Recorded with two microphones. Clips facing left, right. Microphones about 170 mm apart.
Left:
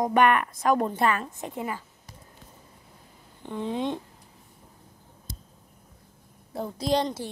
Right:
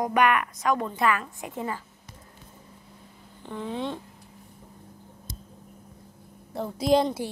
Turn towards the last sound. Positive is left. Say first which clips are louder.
# right 4 dB
turn(degrees=-5)  # may be behind; listen again after turning